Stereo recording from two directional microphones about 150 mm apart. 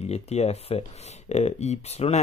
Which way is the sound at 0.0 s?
45° left (ahead or behind).